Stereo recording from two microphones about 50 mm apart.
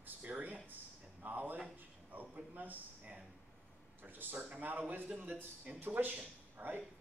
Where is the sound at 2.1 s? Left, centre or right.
Right.